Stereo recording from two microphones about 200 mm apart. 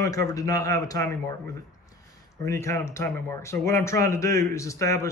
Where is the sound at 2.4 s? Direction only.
15° left (ahead or behind).